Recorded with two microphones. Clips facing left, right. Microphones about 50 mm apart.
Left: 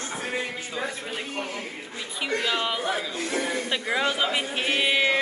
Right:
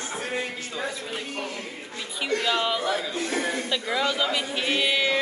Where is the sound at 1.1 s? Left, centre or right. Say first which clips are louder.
Left 1 dB; left.